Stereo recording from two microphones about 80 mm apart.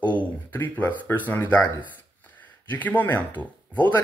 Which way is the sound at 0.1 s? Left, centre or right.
Left.